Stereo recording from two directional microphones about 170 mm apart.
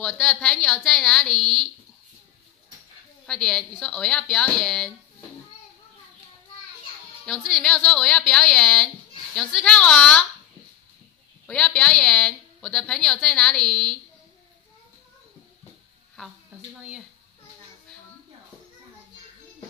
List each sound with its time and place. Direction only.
0.0 s speech: 5° left (ahead or behind)
3.3 s speech: 5° left (ahead or behind)
7.2 s speech: 5° left (ahead or behind)
11.4 s speech: 5° left (ahead or behind)